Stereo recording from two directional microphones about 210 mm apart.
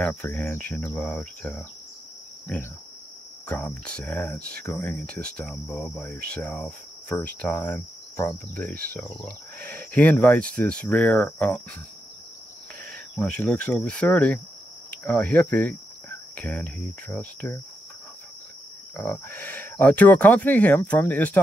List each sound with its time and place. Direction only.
0.0 s cricket: 5° left (ahead or behind)
3.4 s cricket: 5° left (ahead or behind)
12.9 s speech: 5° left (ahead or behind)
18.9 s cricket: 10° left (ahead or behind)